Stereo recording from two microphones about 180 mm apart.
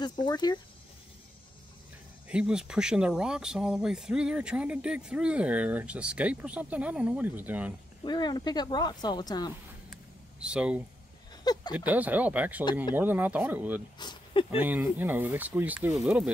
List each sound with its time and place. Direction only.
0.0 s speech: 25° left (ahead or behind)
2.2 s speech: 5° right (ahead or behind)
8.0 s speech: 25° left (ahead or behind)
10.4 s speech: 5° right (ahead or behind)
13.9 s a sound: 25° left (ahead or behind)
14.5 s speech: 10° right (ahead or behind)